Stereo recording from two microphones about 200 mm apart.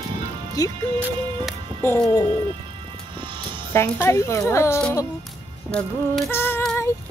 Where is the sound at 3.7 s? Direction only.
10° left (ahead or behind).